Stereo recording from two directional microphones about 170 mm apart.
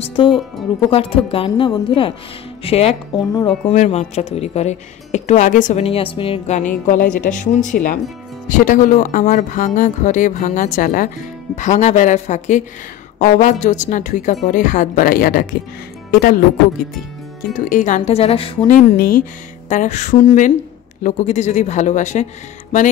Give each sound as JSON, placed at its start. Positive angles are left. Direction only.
{"t": 0.0, "sound": "speech", "side_deg": 30}
{"t": 17.6, "sound": "speech", "side_deg": 50}
{"t": 18.9, "sound": "speech", "side_deg": 60}
{"t": 19.7, "sound": "speech", "side_deg": 45}